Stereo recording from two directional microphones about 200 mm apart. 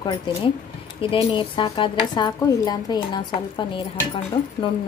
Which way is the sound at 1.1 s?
25° left (ahead or behind).